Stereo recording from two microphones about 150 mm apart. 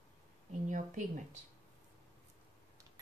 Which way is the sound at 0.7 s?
55° right (ahead or behind).